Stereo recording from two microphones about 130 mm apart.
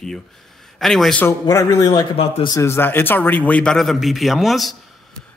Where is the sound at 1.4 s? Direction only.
25° left (ahead or behind).